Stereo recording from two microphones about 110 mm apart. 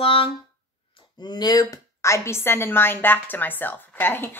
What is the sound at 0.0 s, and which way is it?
Speech, 55° left (ahead or behind).